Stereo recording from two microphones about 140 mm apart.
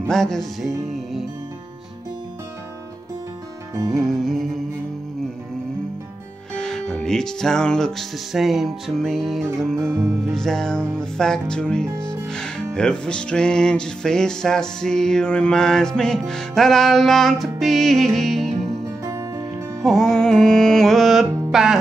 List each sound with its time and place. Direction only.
0.1 s music: 5° left (ahead or behind)
3.7 s music: 25° right (ahead or behind)
4.0 s music: centre (ahead or behind)
6.5 s music: 5° left (ahead or behind)
9.8 s music: 20° right (ahead or behind)
10.3 s music: 5° left (ahead or behind)
19.0 s music: 20° right (ahead or behind)
19.8 s music: 5° left (ahead or behind)